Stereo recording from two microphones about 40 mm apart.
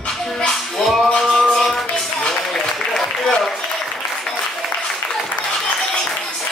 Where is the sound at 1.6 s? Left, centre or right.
Centre.